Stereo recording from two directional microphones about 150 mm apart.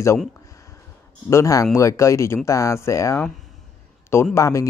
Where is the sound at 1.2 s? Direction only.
20° left (ahead or behind).